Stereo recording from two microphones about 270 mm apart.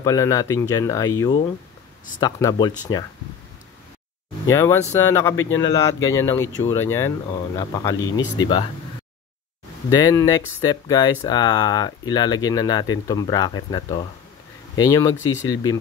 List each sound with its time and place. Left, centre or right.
0.0 s speech: centre
4.5 s speech: centre
9.8 s speech: centre